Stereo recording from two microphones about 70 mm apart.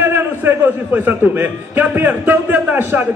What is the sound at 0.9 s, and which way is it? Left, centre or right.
A man's voice, right.